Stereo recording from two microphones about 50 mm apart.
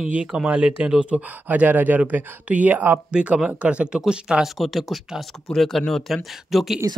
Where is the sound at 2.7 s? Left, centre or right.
Right.